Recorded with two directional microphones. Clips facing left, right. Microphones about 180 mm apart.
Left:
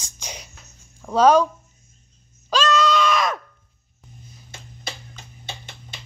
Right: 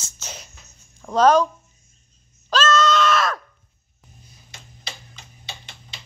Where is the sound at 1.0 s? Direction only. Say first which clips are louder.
Left 1 dB; 10° left (ahead or behind).